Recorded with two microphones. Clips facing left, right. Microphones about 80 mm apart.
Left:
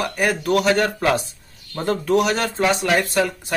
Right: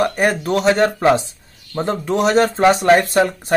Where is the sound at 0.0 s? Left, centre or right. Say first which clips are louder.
Right 4 dB; right.